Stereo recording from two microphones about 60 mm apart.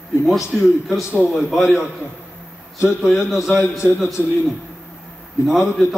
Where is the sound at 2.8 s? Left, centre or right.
Centre.